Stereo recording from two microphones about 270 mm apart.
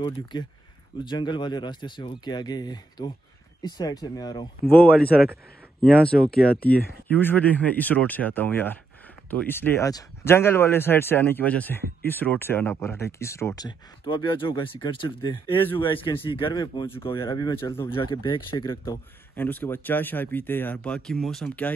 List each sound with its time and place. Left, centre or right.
0.0 s speech: centre
4.9 s speech: centre
6.3 s speech: left
7.1 s speech: centre